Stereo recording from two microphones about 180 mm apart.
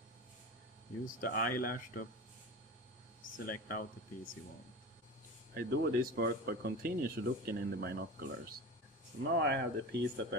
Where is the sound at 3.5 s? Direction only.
50° left (ahead or behind).